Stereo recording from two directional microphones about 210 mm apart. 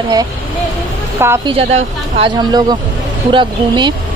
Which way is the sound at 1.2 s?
10° right (ahead or behind).